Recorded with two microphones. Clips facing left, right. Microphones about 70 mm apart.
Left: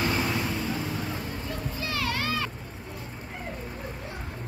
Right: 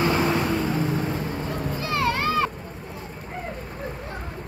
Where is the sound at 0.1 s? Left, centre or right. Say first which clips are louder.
Right 6 dB; right.